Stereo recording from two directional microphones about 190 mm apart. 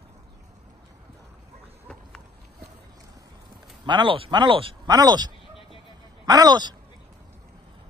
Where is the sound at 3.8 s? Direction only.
25° right (ahead or behind).